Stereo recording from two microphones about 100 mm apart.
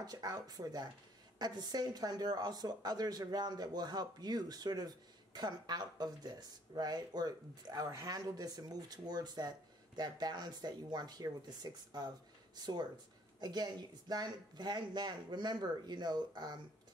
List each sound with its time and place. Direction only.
0.0 s speech: 40° right (ahead or behind)